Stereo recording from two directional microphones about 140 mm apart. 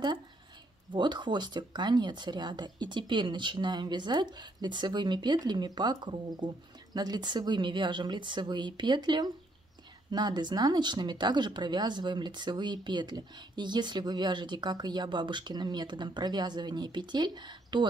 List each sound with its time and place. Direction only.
0.9 s speech: 35° right (ahead or behind)